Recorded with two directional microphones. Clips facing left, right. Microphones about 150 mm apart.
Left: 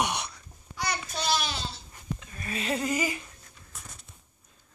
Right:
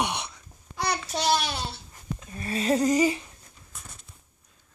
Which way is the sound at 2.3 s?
30° right (ahead or behind).